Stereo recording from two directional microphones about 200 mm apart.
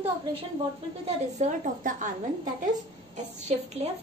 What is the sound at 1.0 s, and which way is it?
A woman's voice, 40° right (ahead or behind).